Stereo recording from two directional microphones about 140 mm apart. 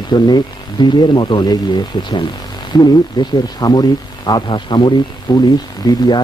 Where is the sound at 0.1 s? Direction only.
30° left (ahead or behind).